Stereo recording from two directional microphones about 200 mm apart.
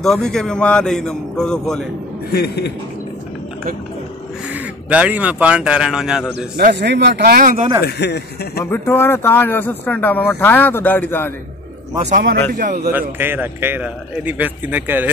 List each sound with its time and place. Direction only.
0.0 s a man's voice: centre (ahead or behind)
2.3 s a man's voice: 55° left (ahead or behind)
4.5 s speech: 5° right (ahead or behind)
6.3 s speech: 55° right (ahead or behind)
7.8 s a man's voice: 55° left (ahead or behind)
8.6 s speech: 10° left (ahead or behind)
12.0 s a man's voice: 40° right (ahead or behind)
12.9 s a man's voice: 10° right (ahead or behind)